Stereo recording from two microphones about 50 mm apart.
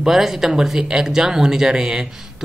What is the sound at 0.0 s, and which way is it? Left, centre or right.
Speech, centre.